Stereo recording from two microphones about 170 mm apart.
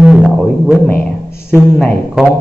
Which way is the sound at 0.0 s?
5° right (ahead or behind).